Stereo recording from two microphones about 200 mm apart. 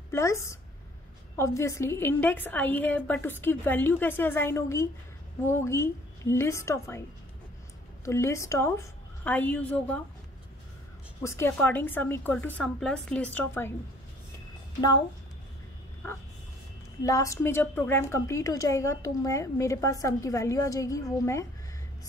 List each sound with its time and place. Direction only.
0.1 s a woman's voice: 15° left (ahead or behind)
11.2 s a woman's voice: 10° left (ahead or behind)
17.0 s a woman's voice: 15° left (ahead or behind)